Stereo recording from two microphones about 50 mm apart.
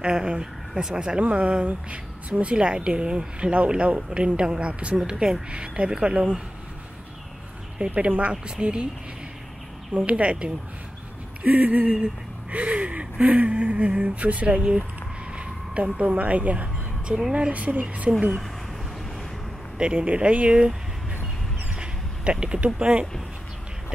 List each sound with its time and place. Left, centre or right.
0.0 s a woman's voice: centre
7.9 s a woman's voice: right
9.9 s a woman's voice: right
19.8 s a woman's voice: right
21.7 s a sound: right
22.8 s a woman's voice: right